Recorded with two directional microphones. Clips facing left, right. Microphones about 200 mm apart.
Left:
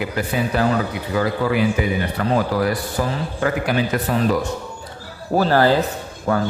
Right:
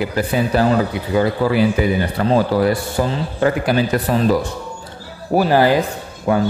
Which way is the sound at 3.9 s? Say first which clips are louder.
Right 3 dB; 35° right (ahead or behind).